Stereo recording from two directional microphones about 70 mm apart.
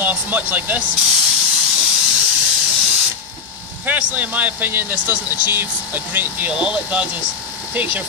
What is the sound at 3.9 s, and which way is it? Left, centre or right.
A man's voice, right.